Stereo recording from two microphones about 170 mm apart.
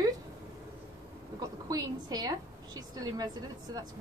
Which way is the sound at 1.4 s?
20° right (ahead or behind).